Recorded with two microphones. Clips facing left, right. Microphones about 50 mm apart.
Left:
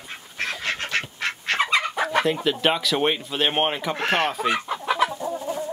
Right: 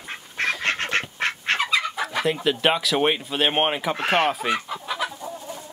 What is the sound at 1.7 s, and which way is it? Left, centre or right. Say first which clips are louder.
Chicken: left 3 dB; left.